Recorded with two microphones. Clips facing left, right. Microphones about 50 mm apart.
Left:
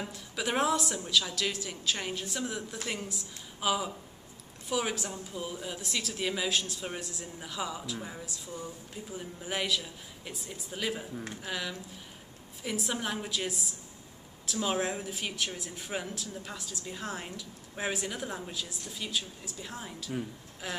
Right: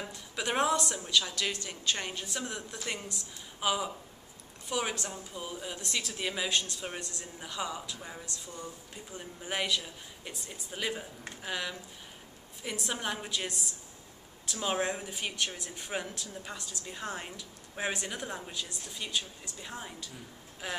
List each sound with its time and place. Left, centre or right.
0.0 s speech: centre